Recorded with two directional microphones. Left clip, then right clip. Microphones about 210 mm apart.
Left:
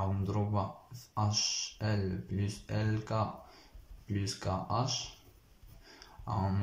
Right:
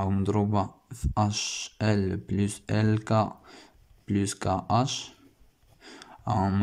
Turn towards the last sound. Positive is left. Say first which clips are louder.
# right 9 dB
turn(degrees=-55)  # may be behind; listen again after turning